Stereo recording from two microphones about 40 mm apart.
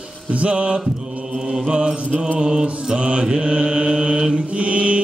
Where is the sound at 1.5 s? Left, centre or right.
Centre.